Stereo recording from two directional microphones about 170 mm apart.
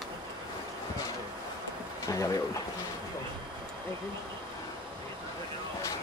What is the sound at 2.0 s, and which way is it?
Speech, 20° left (ahead or behind).